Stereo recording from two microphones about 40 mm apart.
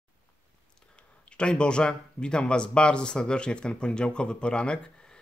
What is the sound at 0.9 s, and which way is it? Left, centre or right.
Speech, left.